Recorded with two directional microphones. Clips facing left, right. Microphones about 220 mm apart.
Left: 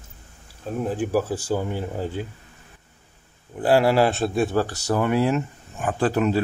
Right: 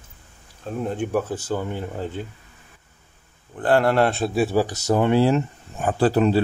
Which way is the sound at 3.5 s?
10° left (ahead or behind).